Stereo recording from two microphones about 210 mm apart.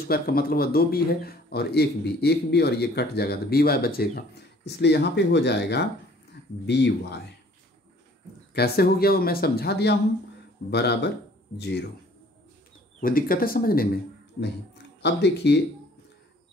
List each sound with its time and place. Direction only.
0.1 s speech: 45° left (ahead or behind)
8.5 s speech: 45° left (ahead or behind)
13.0 s speech: 45° left (ahead or behind)
15.0 s speech: 55° left (ahead or behind)